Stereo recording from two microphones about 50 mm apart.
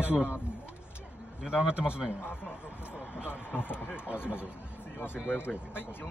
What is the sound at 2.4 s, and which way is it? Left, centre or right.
Speech, left.